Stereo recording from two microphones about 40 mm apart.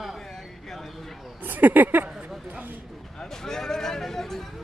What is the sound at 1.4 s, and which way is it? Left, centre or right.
Speech, right.